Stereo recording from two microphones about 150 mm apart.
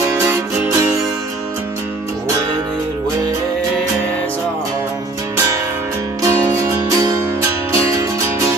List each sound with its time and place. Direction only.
0.1 s music: 15° right (ahead or behind)
6.2 s music: 20° right (ahead or behind)